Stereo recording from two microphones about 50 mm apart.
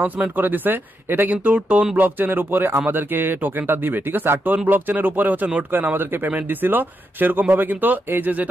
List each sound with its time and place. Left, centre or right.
0.0 s speech: right